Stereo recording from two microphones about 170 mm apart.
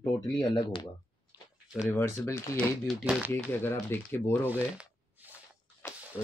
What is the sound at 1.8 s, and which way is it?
Speech, 15° left (ahead or behind).